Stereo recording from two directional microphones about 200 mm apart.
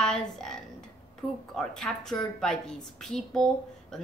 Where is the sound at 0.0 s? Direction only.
5° left (ahead or behind).